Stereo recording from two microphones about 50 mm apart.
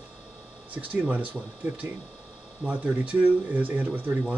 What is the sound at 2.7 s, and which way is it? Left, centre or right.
Speech, right.